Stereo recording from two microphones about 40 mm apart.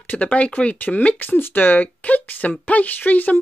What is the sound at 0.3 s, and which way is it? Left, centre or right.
Speech, left.